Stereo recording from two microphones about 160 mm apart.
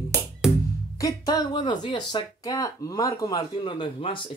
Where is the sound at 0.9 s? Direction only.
20° left (ahead or behind).